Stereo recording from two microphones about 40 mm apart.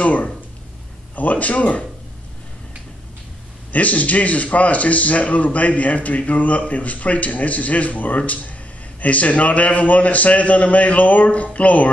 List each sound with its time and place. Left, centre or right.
0.0 s speech: left
3.7 s speech: left